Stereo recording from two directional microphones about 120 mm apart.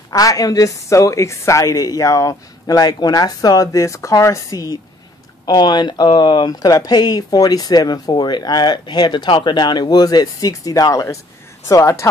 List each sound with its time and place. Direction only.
0.1 s a woman's voice: 30° left (ahead or behind)